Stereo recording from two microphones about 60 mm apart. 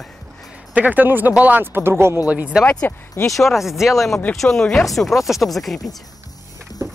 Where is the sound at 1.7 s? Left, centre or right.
Right.